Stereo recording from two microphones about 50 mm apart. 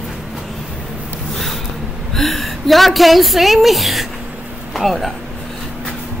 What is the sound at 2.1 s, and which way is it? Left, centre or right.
A woman's voice, centre.